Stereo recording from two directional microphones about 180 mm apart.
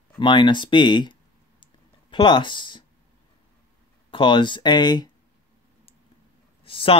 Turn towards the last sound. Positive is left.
turn(degrees=30)  # may be behind; listen again after turning